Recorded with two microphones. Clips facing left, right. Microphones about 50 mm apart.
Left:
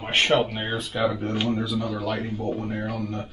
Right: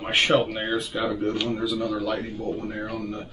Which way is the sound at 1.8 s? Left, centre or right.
Centre.